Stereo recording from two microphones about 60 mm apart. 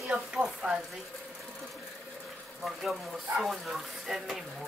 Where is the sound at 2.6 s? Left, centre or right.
Centre.